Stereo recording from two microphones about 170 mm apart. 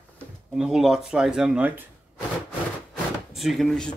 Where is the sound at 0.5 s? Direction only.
5° right (ahead or behind).